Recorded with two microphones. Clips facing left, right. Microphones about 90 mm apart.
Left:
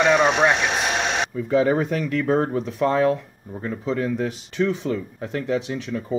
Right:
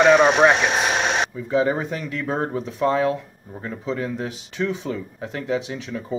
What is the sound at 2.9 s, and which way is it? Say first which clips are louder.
Speech: left 1 dB; 45° left (ahead or behind).